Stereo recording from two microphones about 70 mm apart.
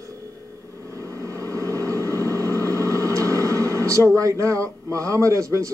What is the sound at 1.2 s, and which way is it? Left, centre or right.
Vehicle, right.